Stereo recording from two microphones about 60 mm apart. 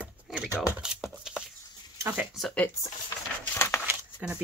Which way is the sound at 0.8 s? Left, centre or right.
Centre.